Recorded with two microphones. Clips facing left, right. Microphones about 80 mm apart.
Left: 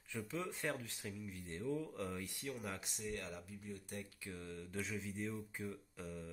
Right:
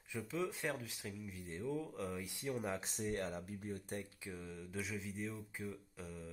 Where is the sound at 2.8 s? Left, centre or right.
Right.